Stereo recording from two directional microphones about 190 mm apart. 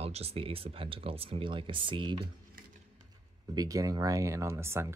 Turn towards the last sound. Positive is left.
turn(degrees=-15)  # may be behind; listen again after turning